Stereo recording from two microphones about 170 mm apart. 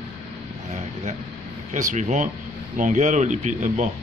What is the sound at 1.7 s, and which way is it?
Speech, 45° right (ahead or behind).